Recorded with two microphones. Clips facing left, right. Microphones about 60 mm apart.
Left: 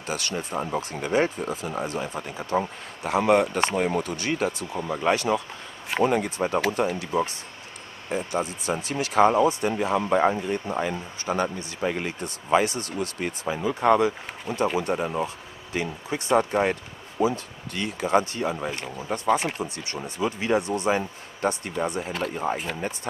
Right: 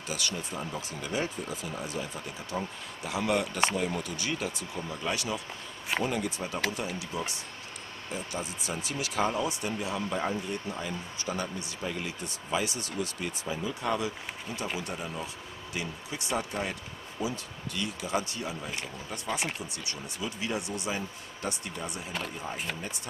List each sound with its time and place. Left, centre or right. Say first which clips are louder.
0.0 s speech: left 5 dB; left